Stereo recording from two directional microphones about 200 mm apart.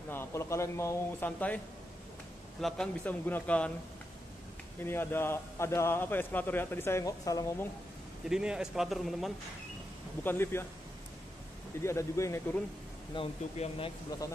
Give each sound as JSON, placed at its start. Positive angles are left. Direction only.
{"t": 0.1, "sound": "a man's voice", "side_deg": 10}
{"t": 2.6, "sound": "a man's voice", "side_deg": 5}
{"t": 4.7, "sound": "a man's voice", "side_deg": 10}
{"t": 8.3, "sound": "a man's voice", "side_deg": -5}
{"t": 10.2, "sound": "a man's voice", "side_deg": 10}
{"t": 11.8, "sound": "a man's voice", "side_deg": 15}
{"t": 13.1, "sound": "speech", "side_deg": 25}